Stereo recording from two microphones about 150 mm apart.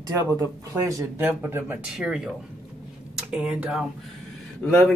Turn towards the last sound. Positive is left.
turn(degrees=5)  # may be behind; listen again after turning